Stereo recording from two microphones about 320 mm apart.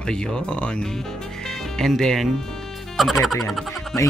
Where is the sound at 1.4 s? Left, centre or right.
Centre.